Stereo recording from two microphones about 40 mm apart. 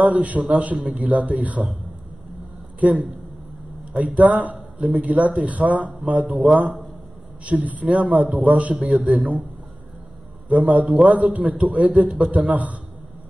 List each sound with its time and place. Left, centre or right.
0.0 s a man's voice: right
2.8 s a man's voice: right
6.2 s a man's voice: right
10.5 s a man's voice: right